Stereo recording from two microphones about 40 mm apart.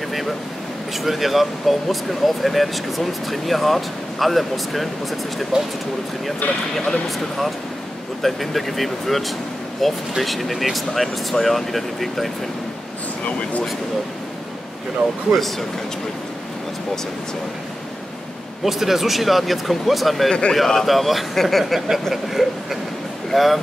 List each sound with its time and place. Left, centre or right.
1.0 s speech: centre
5.5 s speech: centre
6.9 s speech: centre
13.2 s speech: left
18.6 s speech: centre
20.2 s a man's voice: left
20.5 s speech: centre